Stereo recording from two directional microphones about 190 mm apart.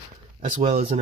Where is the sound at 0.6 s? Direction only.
30° right (ahead or behind).